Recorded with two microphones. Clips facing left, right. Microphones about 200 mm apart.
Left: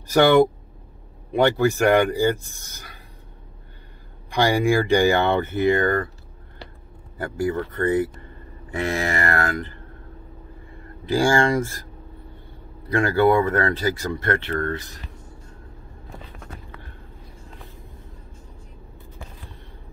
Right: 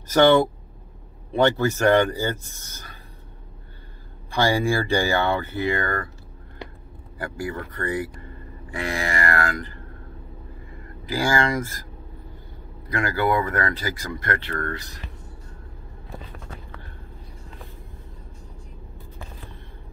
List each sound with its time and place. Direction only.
0.1 s speech: 15° left (ahead or behind)
4.3 s speech: 15° left (ahead or behind)
7.2 s speech: 25° left (ahead or behind)
11.1 s speech: 30° left (ahead or behind)
12.9 s speech: 30° left (ahead or behind)